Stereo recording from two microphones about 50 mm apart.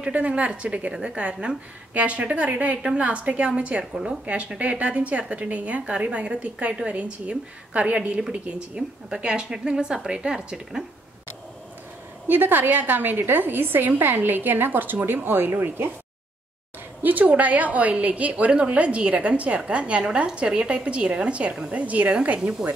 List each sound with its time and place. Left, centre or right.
0.0 s a woman's voice: right
3.9 s speech: centre
4.6 s a woman's voice: right
12.3 s a woman's voice: right
17.0 s a woman's voice: right
22.4 s speech: centre